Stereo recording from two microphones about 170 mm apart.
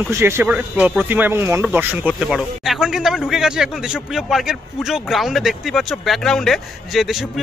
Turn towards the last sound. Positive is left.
turn(degrees=5)  # may be behind; listen again after turning